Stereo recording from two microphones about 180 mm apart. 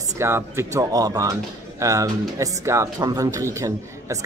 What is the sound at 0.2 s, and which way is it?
Speech, 15° right (ahead or behind).